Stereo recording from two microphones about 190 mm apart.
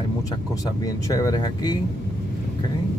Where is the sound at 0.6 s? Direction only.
15° left (ahead or behind).